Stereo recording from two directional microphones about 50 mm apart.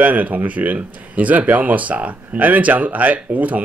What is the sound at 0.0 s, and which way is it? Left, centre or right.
A man's voice, right.